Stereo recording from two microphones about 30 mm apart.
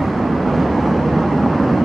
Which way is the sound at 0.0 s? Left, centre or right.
Centre.